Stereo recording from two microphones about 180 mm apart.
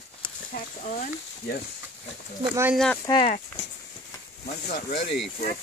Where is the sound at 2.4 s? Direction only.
15° right (ahead or behind).